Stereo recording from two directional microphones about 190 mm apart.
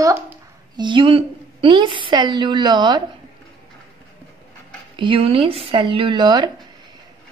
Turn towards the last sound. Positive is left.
turn(degrees=-25)  # may be behind; listen again after turning